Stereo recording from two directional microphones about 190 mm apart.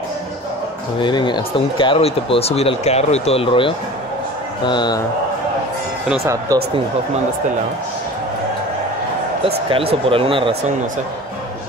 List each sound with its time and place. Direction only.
0.9 s a man's voice: 25° left (ahead or behind)
6.5 s speech: 15° right (ahead or behind)
9.7 s speech: 30° right (ahead or behind)